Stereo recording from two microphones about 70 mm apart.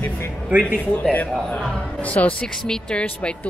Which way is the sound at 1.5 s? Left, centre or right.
Centre.